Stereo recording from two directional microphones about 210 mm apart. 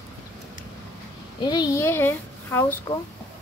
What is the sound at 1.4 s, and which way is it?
A child's voice, 20° left (ahead or behind).